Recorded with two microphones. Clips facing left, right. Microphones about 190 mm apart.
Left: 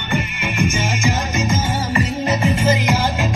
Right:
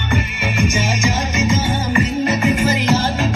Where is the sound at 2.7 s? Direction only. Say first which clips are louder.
Right 1 dB; 15° left (ahead or behind).